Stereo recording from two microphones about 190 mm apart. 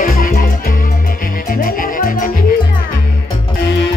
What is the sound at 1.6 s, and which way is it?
Music, 45° left (ahead or behind).